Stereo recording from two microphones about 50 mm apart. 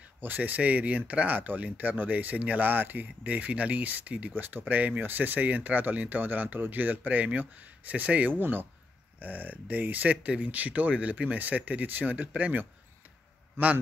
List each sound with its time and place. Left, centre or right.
0.2 s speech: right